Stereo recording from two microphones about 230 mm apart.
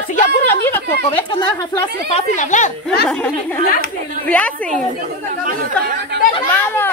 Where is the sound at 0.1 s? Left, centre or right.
Left.